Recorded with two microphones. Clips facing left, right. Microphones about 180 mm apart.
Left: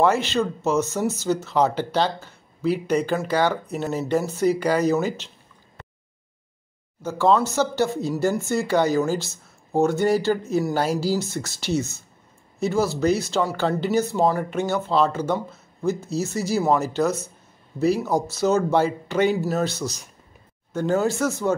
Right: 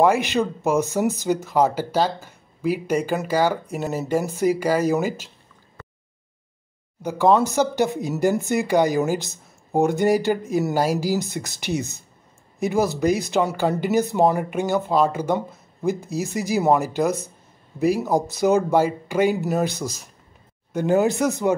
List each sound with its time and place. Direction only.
0.0 s speech: 15° right (ahead or behind)
7.0 s speech: 15° right (ahead or behind)